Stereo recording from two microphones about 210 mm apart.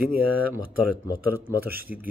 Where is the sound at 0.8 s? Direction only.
10° right (ahead or behind).